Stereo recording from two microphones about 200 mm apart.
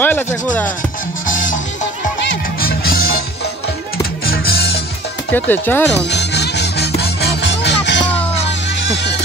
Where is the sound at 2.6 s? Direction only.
45° left (ahead or behind).